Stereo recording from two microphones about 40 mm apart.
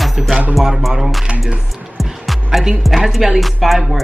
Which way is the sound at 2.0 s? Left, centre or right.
Centre.